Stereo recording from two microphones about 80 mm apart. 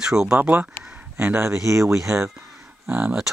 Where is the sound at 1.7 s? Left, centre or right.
Right.